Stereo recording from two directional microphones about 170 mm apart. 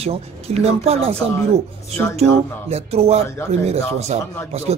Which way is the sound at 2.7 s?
35° right (ahead or behind).